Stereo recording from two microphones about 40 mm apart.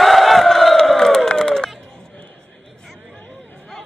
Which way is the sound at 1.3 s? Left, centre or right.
Centre.